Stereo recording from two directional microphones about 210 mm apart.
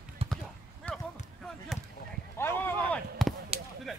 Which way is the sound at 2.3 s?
10° left (ahead or behind).